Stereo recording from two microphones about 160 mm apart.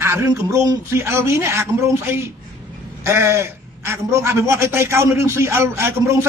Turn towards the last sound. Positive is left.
turn(degrees=-15)  # may be behind; listen again after turning